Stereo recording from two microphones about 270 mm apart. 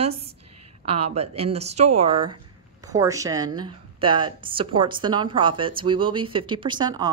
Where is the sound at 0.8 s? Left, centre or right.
Right.